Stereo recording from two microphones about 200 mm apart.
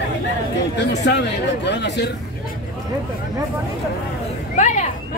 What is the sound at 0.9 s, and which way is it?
Speech, 60° left (ahead or behind).